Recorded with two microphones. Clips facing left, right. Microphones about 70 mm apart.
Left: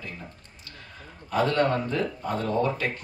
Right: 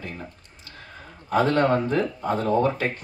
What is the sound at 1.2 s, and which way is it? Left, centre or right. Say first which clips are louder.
A man's voice: right 3 dB; right.